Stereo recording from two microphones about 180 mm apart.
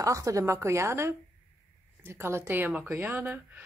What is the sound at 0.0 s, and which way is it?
Speech, 20° right (ahead or behind).